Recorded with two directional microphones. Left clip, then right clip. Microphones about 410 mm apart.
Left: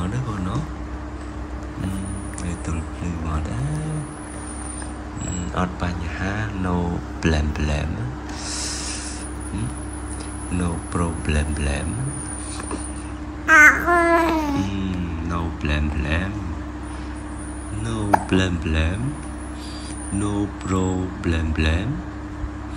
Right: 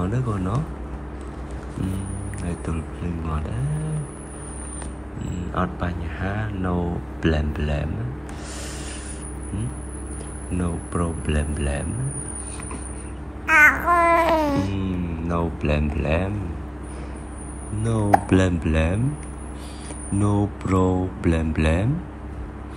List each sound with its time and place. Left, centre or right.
0.0 s a sound: centre
5.5 s speech: centre
10.6 s speech: centre
13.5 s babbling: centre
14.6 s music: centre
18.3 s speech: centre
20.2 s speech: centre